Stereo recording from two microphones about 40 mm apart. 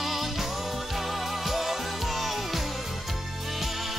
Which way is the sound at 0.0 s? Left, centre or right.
Centre.